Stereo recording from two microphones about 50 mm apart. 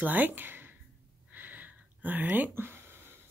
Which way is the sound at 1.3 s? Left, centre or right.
Right.